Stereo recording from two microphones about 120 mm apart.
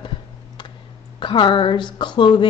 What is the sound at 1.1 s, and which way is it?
Speech, 40° left (ahead or behind).